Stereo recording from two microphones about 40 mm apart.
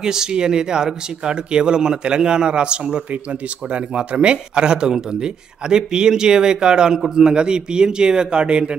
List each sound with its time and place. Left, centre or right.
0.0 s speech: centre
3.1 s speech: right